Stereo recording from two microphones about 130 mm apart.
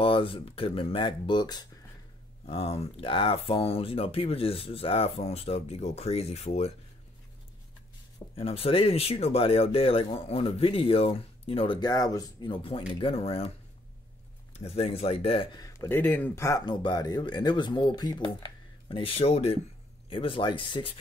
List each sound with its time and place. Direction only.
0.0 s speech: 45° left (ahead or behind)
2.4 s speech: 50° left (ahead or behind)
8.4 s speech: 50° left (ahead or behind)
14.5 s speech: 55° left (ahead or behind)
15.5 s speech: 25° left (ahead or behind)
15.9 s speech: 10° left (ahead or behind)
16.6 s speech: 35° left (ahead or behind); by 19.6 s 55° left (ahead or behind)
20.1 s speech: 40° left (ahead or behind)